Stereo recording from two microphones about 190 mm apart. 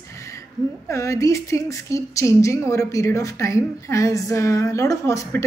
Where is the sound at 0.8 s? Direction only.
15° left (ahead or behind).